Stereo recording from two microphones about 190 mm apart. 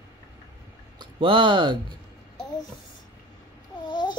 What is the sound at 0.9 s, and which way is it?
Speech, 25° right (ahead or behind).